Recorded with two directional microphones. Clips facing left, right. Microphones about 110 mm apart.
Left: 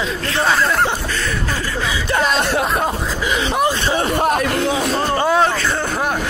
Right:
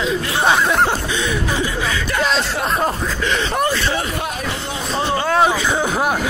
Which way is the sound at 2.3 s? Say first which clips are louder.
Left 3 dB; 60° left (ahead or behind).